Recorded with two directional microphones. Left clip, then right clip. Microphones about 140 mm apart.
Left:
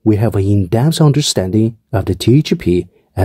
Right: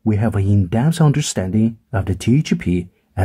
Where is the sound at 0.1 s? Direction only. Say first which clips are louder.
Left 6 dB; 30° left (ahead or behind).